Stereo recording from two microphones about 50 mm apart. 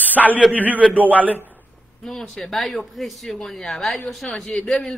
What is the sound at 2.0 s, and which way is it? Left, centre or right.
A woman's voice, centre.